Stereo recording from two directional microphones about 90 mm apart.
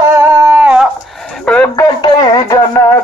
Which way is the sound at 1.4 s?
15° left (ahead or behind).